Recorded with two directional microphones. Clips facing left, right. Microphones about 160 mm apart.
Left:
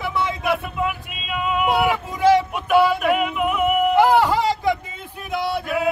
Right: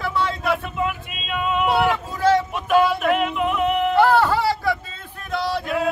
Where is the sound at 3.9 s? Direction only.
15° left (ahead or behind).